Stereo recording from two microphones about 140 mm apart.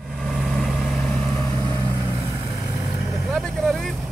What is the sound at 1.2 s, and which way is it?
Vehicle, 20° left (ahead or behind).